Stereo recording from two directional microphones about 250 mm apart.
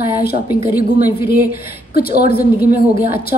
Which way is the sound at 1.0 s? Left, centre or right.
Centre.